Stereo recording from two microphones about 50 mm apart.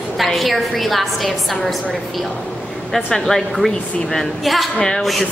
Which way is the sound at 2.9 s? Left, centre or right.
Centre.